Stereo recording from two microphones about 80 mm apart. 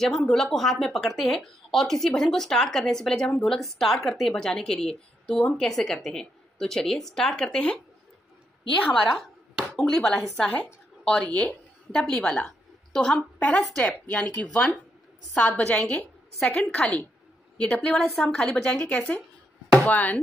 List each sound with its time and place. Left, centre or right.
0.0 s a woman's voice: centre
8.8 s a woman's voice: centre
19.9 s chopping: centre